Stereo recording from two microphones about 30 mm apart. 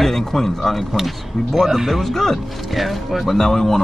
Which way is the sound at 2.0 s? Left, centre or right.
Centre.